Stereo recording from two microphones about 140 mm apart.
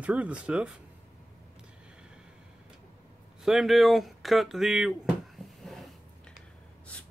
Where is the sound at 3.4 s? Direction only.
Centre (ahead or behind).